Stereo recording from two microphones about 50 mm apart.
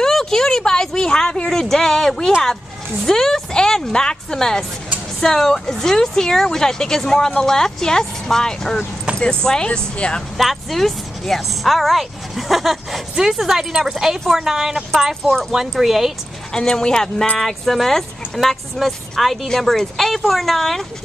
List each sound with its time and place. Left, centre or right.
0.0 s a sound: centre
3.1 s speech: centre
10.3 s speech: centre
16.5 s speech: centre